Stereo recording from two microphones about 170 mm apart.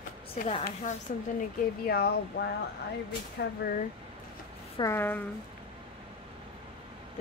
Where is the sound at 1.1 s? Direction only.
50° left (ahead or behind).